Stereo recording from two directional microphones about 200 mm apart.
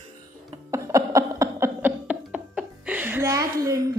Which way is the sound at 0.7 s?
15° right (ahead or behind).